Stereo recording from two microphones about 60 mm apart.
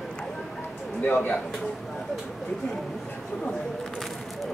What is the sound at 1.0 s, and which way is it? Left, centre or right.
Speech, left.